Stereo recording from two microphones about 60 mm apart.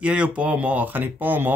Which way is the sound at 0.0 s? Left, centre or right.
Centre.